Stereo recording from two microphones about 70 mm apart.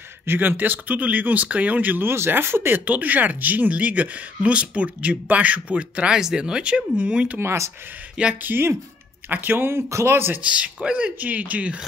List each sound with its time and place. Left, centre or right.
0.3 s speech: right
2.8 s speech: right
7.3 s speech: right
8.4 s speech: right
10.4 s speech: centre